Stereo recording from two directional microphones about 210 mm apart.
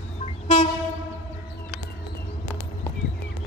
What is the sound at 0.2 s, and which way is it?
Train, 30° left (ahead or behind).